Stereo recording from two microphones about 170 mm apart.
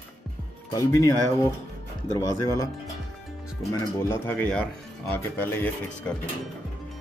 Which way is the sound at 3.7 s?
15° left (ahead or behind).